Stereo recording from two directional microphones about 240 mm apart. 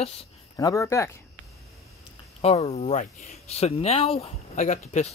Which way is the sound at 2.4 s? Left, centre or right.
Left.